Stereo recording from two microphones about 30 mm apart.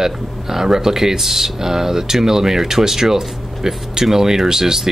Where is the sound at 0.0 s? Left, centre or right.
Centre.